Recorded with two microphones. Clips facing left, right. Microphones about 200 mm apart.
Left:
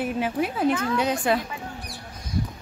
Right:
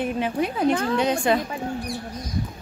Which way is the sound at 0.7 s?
35° right (ahead or behind).